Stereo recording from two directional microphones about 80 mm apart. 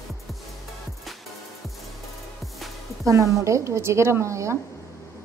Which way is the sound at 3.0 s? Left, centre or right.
Right.